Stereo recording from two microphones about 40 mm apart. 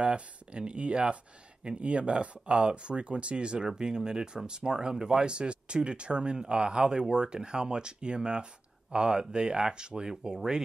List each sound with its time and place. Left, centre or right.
0.0 s speech: right